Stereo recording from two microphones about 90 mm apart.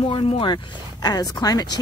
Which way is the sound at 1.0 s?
45° left (ahead or behind).